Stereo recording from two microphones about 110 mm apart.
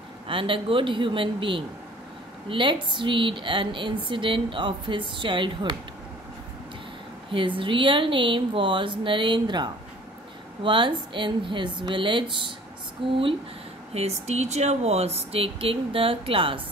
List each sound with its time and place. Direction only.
0.3 s a woman's voice: 50° right (ahead or behind)
7.2 s a woman's voice: 50° right (ahead or behind)
13.9 s speech: 80° right; by 16.6 s 50° right (ahead or behind)